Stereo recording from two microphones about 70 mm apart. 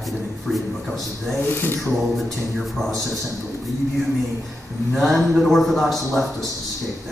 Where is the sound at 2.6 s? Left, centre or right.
Centre.